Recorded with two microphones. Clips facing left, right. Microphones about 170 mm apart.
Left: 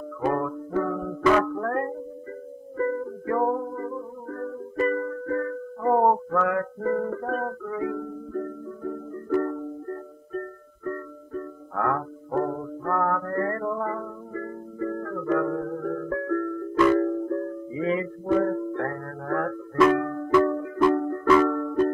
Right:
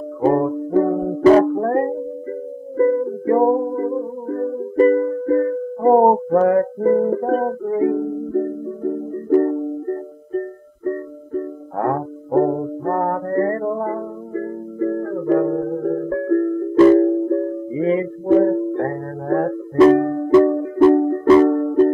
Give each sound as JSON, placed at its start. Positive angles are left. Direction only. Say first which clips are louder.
{"t": 0.2, "sound": "music", "louder": "right 9 dB", "side_deg": -30}